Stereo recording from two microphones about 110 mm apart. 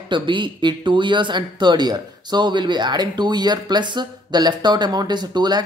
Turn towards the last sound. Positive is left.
turn(degrees=-40)  # may be behind; listen again after turning